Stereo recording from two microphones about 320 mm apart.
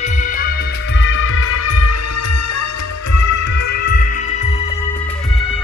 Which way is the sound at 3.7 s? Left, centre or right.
Left.